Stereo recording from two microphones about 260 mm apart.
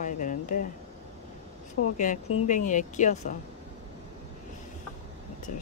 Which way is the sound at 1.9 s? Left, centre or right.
Left.